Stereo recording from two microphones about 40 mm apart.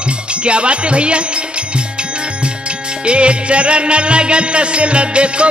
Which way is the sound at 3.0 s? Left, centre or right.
Right.